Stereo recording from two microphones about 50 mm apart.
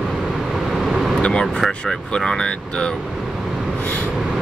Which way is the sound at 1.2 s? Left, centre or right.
Centre.